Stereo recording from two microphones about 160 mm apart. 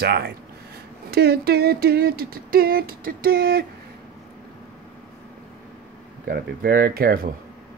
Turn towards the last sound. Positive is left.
turn(degrees=-65)  # may be behind; listen again after turning